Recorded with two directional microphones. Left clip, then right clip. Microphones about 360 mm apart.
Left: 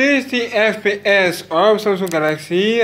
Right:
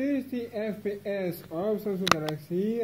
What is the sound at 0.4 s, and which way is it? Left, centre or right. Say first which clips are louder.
Speech: left 17 dB; left.